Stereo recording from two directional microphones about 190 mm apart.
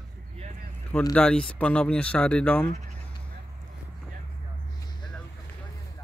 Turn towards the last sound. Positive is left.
turn(degrees=20)  # may be behind; listen again after turning